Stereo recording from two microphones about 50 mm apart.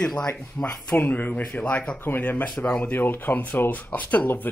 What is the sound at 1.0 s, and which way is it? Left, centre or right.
Speech, left.